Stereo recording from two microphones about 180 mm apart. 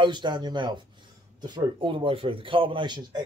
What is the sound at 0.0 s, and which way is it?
Speech, 25° right (ahead or behind).